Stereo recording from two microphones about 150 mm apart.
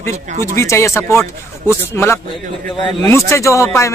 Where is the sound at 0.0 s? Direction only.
20° left (ahead or behind).